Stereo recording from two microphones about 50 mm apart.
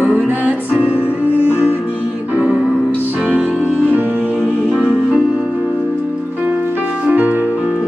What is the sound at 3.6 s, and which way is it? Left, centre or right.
Music, right.